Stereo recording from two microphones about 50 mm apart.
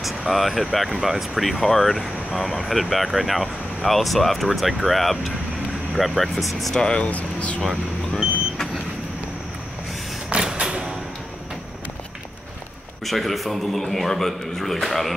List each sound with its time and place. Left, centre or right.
0.3 s speech: centre
7.1 s speech: left
10.3 s a sound: centre
13.0 s speech: centre